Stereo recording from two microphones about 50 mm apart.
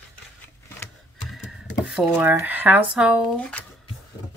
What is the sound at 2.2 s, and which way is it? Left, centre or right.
Speech, right.